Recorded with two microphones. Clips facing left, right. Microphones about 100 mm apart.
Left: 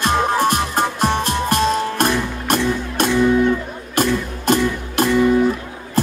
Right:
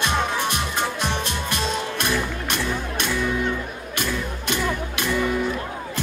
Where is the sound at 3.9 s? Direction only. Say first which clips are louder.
Left 9 dB; 40° left (ahead or behind).